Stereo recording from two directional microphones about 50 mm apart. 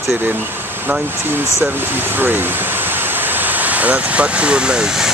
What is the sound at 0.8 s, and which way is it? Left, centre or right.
Vehicle, right.